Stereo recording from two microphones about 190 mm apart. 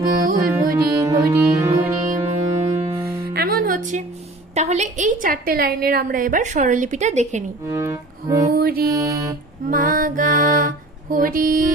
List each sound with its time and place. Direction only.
0.1 s music: 45° right (ahead or behind)
0.9 s music: 15° right (ahead or behind)
3.3 s music: 50° right (ahead or behind)
4.6 s a woman's voice: 35° right (ahead or behind)
7.7 s music: 15° right (ahead or behind)
8.5 s music: 50° right (ahead or behind)
8.9 s music: 15° right (ahead or behind)
9.7 s music: 45° right (ahead or behind)